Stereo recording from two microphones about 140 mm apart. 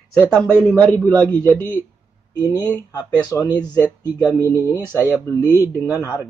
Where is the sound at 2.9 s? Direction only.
25° left (ahead or behind).